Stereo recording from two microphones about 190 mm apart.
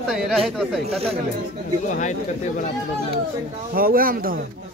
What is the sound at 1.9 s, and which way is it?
Speech, 40° left (ahead or behind).